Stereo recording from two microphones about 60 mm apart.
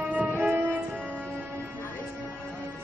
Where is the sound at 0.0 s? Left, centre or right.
Right.